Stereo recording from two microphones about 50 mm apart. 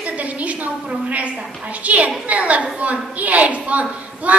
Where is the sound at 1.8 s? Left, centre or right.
Right.